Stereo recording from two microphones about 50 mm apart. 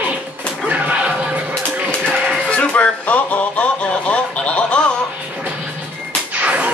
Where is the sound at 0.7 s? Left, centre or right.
Right.